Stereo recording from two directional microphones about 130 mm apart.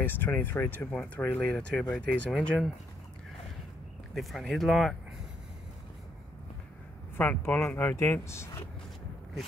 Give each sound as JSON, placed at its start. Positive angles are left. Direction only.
{"t": 0.0, "sound": "speech", "side_deg": 15}
{"t": 4.1, "sound": "speech", "side_deg": 0}
{"t": 7.2, "sound": "speech", "side_deg": 15}